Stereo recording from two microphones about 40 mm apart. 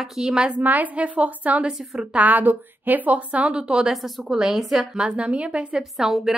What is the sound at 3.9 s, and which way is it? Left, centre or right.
Speech, centre.